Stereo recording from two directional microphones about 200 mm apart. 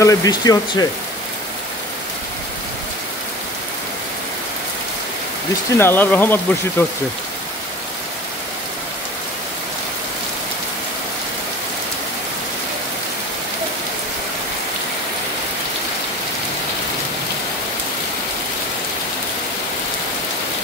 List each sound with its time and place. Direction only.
0.0 s speech: 15° left (ahead or behind)
5.8 s speech: 10° left (ahead or behind)